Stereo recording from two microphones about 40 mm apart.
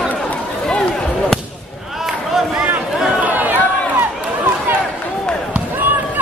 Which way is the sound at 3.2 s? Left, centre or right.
Right.